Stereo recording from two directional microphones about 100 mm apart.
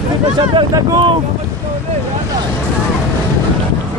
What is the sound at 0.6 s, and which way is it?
Speech, 40° right (ahead or behind).